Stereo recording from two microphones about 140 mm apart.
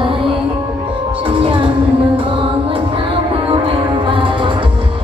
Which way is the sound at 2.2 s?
40° right (ahead or behind).